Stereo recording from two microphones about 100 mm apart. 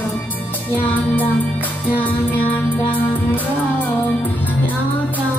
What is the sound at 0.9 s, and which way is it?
Music, 15° left (ahead or behind).